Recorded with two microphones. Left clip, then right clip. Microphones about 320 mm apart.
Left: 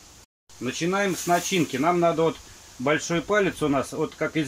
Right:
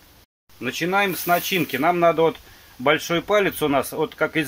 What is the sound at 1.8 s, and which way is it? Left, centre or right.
Speech, right.